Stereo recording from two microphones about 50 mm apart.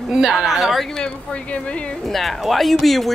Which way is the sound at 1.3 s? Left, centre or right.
Left.